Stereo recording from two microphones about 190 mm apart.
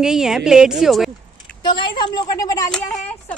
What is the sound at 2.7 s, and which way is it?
Speech, 5° left (ahead or behind).